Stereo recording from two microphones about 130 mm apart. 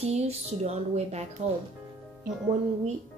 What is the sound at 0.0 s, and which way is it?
A woman's voice, 55° right (ahead or behind).